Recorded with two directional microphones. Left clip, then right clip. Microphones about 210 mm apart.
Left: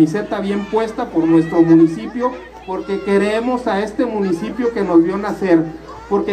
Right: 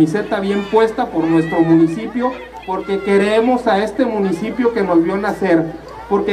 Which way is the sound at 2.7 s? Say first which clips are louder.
Right 2 dB; 15° right (ahead or behind).